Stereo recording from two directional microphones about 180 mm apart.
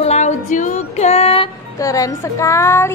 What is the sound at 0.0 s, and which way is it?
Music, 40° left (ahead or behind).